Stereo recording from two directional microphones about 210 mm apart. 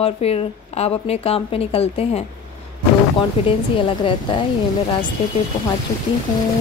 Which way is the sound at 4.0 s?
25° left (ahead or behind).